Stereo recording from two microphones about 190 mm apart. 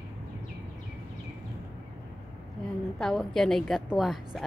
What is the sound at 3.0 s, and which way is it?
A woman's voice, 5° left (ahead or behind).